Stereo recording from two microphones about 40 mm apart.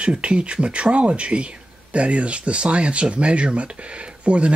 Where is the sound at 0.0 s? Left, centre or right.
Right.